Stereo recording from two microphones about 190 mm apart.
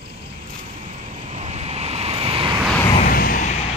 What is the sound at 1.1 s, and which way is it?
Waves, 35° right (ahead or behind).